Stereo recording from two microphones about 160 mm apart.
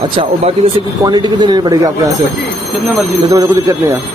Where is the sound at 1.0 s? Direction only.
25° right (ahead or behind).